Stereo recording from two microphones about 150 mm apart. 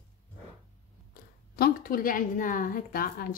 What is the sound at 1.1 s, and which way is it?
A woman's voice, 85° left.